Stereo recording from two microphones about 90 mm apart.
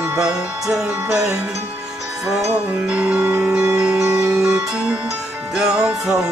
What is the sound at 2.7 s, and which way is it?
Music, 15° right (ahead or behind).